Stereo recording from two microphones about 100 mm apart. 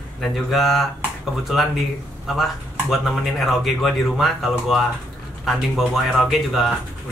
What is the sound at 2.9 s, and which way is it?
Speech, centre (ahead or behind).